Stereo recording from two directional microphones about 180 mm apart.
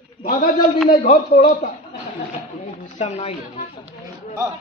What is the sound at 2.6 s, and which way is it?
Speech, 40° left (ahead or behind).